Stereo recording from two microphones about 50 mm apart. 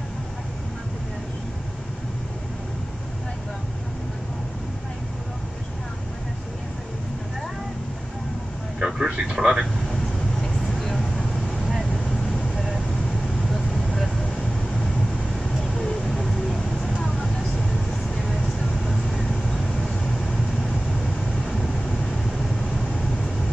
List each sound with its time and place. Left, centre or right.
8.7 s vehicle: centre
10.8 s vehicle: centre
15.7 s vehicle: centre
16.1 s vehicle: centre